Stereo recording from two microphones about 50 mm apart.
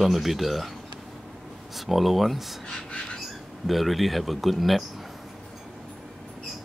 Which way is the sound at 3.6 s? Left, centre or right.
Centre.